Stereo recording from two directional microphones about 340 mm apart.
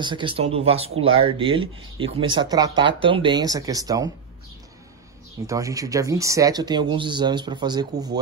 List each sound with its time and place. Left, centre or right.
0.0 s speech: centre
5.5 s speech: centre